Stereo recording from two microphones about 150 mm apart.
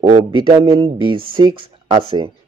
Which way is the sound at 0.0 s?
30° right (ahead or behind).